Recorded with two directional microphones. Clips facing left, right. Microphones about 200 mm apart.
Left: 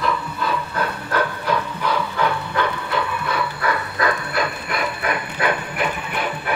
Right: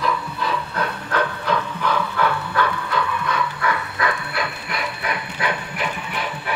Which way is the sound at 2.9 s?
30° left (ahead or behind).